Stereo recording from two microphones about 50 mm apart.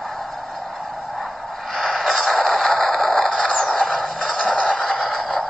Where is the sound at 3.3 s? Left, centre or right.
Centre.